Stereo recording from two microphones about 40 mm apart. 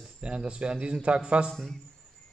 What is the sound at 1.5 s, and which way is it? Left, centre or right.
Speech, centre.